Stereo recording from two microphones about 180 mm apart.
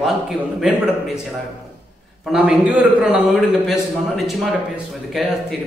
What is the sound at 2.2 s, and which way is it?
A man's voice, 5° right (ahead or behind).